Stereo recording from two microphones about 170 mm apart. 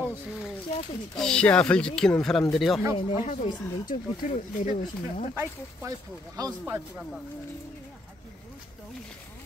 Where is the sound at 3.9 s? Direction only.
50° left (ahead or behind).